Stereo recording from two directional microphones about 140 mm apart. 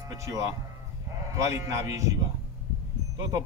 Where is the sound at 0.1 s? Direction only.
25° right (ahead or behind).